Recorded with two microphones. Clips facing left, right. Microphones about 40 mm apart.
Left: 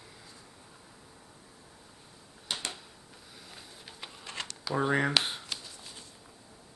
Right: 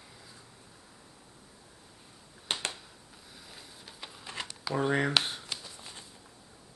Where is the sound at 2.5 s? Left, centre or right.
Right.